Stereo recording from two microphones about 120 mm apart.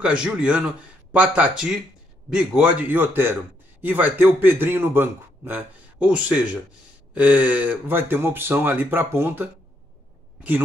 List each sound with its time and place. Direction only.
0.0 s a man's voice: 10° right (ahead or behind)